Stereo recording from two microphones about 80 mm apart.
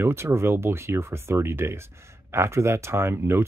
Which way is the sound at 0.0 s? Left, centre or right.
Right.